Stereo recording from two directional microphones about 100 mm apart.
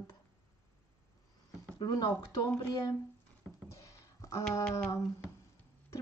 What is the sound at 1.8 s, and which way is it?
Speech, 45° left (ahead or behind).